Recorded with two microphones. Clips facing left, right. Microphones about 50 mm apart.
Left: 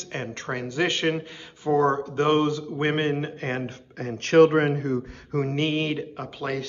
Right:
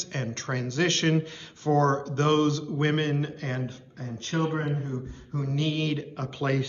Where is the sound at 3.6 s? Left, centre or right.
Left.